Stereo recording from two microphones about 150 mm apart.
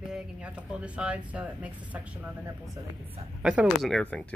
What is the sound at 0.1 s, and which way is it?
Speech, 10° right (ahead or behind).